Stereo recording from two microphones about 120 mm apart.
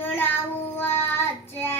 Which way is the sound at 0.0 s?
15° left (ahead or behind).